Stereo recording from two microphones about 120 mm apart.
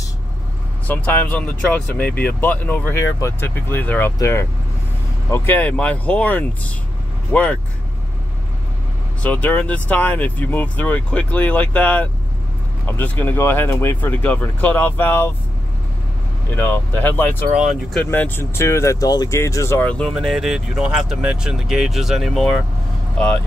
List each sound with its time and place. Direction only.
0.8 s speech: 15° left (ahead or behind)
9.2 s speech: 10° left (ahead or behind)
16.5 s speech: 20° left (ahead or behind)
19.8 s speech: 10° left (ahead or behind)
20.2 s speech: centre (ahead or behind)